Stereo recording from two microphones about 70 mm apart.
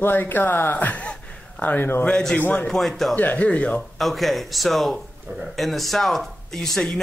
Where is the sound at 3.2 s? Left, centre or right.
Left.